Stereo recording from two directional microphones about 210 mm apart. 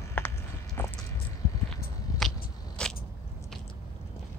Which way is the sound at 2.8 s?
5° left (ahead or behind).